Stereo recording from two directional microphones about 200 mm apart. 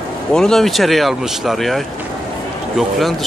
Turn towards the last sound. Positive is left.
turn(degrees=0)  # may be behind; listen again after turning